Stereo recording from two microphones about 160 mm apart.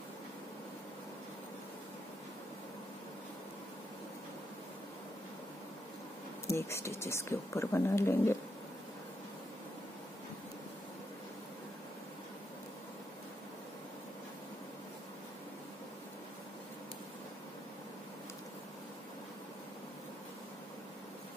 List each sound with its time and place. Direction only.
6.4 s a woman's voice: 15° left (ahead or behind)